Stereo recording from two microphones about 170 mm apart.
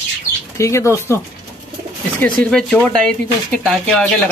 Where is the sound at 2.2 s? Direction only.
5° left (ahead or behind).